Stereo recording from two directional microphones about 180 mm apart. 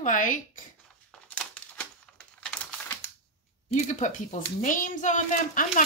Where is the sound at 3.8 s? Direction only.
45° left (ahead or behind).